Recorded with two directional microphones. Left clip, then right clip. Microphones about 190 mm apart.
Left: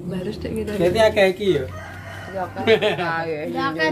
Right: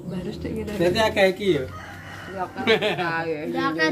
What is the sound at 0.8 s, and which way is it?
Speech, 30° right (ahead or behind).